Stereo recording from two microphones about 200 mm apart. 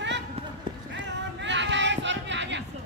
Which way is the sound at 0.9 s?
65° right (ahead or behind).